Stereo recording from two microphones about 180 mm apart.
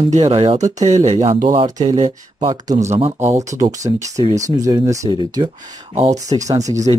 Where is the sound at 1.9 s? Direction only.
40° right (ahead or behind).